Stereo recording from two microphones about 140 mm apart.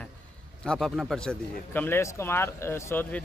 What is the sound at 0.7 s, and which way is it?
Speech, centre (ahead or behind).